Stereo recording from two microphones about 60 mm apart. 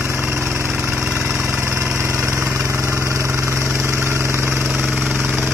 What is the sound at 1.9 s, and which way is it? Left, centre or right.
Vehicle, right.